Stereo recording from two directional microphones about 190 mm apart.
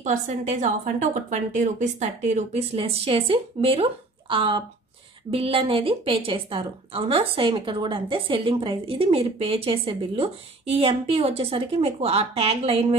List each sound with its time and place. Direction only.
0.0 s a woman's voice: 40° right (ahead or behind)